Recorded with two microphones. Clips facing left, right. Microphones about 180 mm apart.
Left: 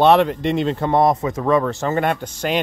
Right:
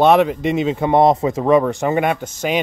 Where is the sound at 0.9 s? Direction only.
25° right (ahead or behind); by 2.6 s 5° right (ahead or behind).